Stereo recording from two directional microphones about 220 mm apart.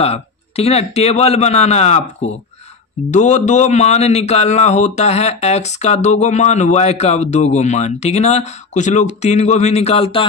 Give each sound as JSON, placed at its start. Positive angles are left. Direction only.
{"t": 0.0, "sound": "a man's voice", "side_deg": 30}